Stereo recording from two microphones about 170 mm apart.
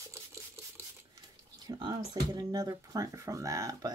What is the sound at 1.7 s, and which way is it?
Speech, 25° right (ahead or behind).